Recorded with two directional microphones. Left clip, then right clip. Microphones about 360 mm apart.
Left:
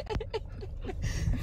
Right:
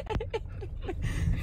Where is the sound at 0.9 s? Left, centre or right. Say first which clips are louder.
Right 2 dB; centre.